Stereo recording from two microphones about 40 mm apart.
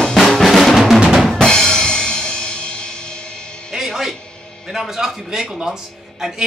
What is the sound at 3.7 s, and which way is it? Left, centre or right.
Music, centre.